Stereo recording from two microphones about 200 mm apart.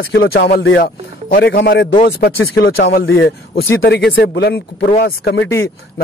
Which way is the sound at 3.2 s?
60° left (ahead or behind).